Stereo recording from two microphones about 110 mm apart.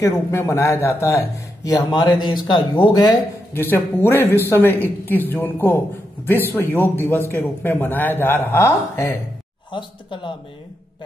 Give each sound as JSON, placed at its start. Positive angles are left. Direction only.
{"t": 0.0, "sound": "a man's voice", "side_deg": 25}
{"t": 3.5, "sound": "a man's voice", "side_deg": 20}
{"t": 9.7, "sound": "speech", "side_deg": 50}